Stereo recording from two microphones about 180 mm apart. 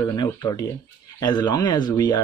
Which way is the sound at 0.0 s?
20° left (ahead or behind).